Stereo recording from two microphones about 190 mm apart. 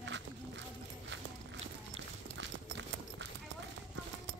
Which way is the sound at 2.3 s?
70° right (ahead or behind).